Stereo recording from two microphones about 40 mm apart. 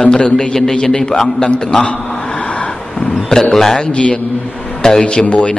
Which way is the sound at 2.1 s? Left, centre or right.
Left.